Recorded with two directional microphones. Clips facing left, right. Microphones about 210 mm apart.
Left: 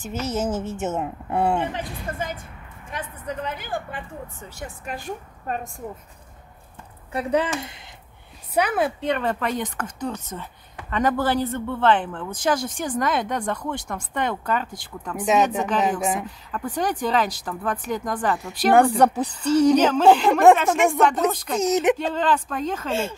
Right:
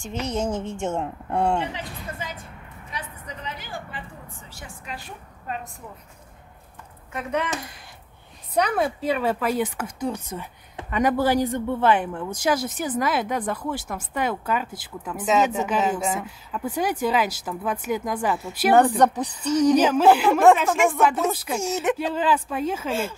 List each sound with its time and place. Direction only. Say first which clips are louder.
0.0 s speech: left 1 dB; 5° left (ahead or behind)
1.6 s a woman's voice: left 3 dB; 55° left (ahead or behind)
7.1 s speech: left 4 dB; 35° left (ahead or behind)
8.5 s speech: left 1 dB; 5° left (ahead or behind)
15.8 s a woman's voice: left 1 dB; 15° left (ahead or behind)
16.3 s speech: even; 10° right (ahead or behind)
18.8 s a woman's voice: left 1 dB; 10° left (ahead or behind)
19.7 s speech: right 1 dB; 10° right (ahead or behind)
21.5 s speech: left 6 dB; 20° left (ahead or behind)
21.9 s speech: even; 10° right (ahead or behind)